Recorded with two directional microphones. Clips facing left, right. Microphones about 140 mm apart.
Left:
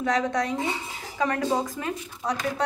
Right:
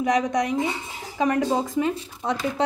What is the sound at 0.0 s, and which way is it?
A woman's voice, 20° right (ahead or behind).